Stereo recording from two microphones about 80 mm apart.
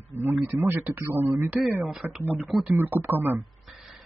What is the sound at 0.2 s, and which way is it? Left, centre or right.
Speech, right.